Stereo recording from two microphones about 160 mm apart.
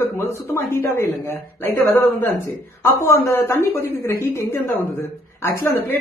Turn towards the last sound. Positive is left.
turn(degrees=15)  # may be behind; listen again after turning